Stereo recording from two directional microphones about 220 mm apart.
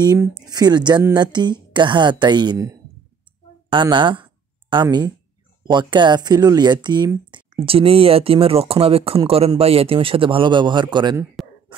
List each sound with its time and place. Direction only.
0.0 s a woman's voice: 15° right (ahead or behind)